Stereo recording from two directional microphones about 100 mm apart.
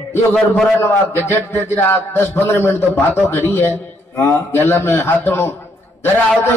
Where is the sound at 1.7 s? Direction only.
25° left (ahead or behind).